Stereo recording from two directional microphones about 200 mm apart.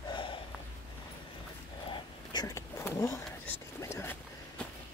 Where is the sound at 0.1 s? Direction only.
25° left (ahead or behind).